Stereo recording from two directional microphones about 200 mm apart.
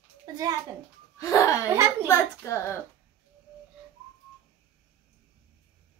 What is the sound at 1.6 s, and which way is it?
Speech, 10° right (ahead or behind).